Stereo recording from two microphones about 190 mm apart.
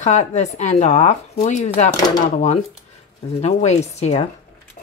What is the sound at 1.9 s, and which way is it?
Speech, 20° left (ahead or behind).